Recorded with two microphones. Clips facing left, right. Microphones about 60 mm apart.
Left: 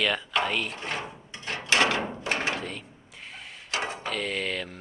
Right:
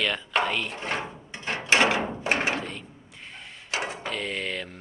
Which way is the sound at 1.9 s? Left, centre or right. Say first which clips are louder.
Right 2 dB; centre.